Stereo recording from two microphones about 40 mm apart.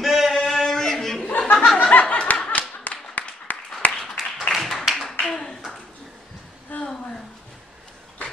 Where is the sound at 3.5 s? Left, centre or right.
Left.